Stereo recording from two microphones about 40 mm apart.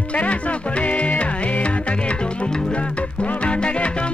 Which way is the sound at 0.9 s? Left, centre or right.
Left.